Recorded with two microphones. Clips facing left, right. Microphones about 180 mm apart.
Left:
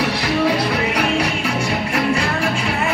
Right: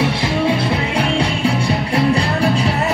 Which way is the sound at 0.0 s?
25° right (ahead or behind).